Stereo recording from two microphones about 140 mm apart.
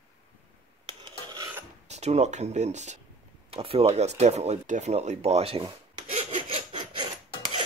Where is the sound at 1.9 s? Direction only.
50° right (ahead or behind).